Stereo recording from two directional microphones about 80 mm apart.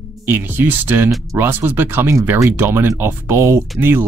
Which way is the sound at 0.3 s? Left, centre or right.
Right.